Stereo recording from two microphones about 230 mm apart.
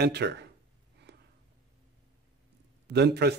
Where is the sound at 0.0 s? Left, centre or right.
Right.